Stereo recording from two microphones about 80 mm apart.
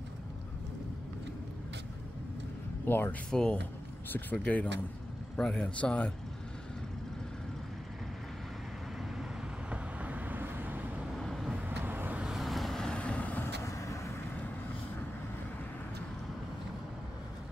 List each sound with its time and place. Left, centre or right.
2.8 s speech: left
3.3 s speech: centre
4.1 s speech: left
9.7 s vehicle: centre
11.0 s vehicle: centre
11.5 s vehicle: right
12.2 s vehicle: centre
13.6 s vehicle: left